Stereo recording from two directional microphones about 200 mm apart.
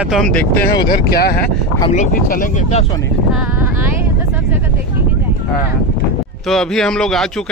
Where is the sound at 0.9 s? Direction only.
50° left (ahead or behind).